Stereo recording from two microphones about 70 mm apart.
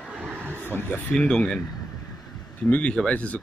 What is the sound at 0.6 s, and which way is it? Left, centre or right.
Speech, left.